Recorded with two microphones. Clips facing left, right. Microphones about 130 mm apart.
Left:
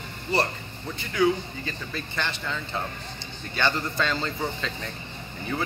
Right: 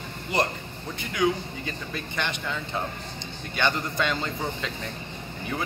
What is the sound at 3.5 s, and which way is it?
Speech, 15° right (ahead or behind).